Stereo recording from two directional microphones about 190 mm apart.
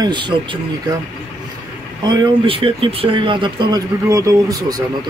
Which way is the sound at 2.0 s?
25° right (ahead or behind).